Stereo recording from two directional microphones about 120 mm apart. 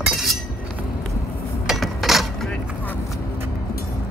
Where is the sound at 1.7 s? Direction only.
Centre (ahead or behind).